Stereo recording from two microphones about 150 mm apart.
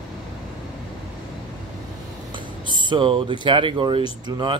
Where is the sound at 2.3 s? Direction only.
30° right (ahead or behind).